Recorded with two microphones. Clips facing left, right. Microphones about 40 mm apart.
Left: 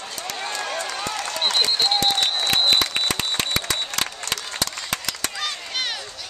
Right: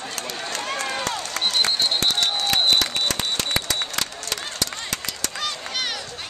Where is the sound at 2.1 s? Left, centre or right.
Centre.